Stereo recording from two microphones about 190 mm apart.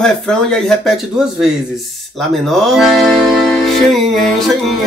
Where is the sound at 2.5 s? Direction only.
Centre (ahead or behind).